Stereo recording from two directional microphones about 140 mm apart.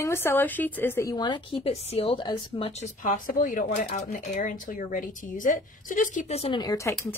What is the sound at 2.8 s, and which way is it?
Speech, 65° left (ahead or behind).